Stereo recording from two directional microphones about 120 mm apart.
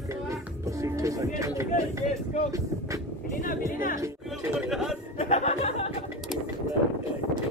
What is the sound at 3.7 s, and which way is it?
Music, 25° right (ahead or behind).